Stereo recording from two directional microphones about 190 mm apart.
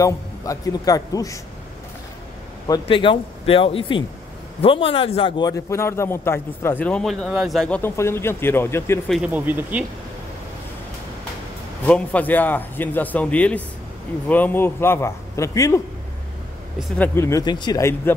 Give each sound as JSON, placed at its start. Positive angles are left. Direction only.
{"t": 0.0, "sound": "a man's voice", "side_deg": 20}
{"t": 2.7, "sound": "a man's voice", "side_deg": 25}
{"t": 9.1, "sound": "speech", "side_deg": -5}
{"t": 11.8, "sound": "a man's voice", "side_deg": 10}
{"t": 17.0, "sound": "a man's voice", "side_deg": 15}